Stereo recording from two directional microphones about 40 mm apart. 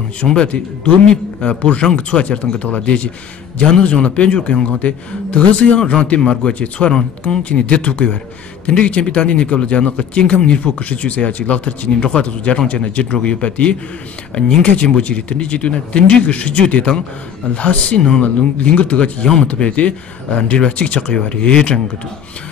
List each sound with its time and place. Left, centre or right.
0.2 s speech: centre
1.1 s speech: left
7.4 s speech: left
14.9 s speech: left
18.2 s speech: left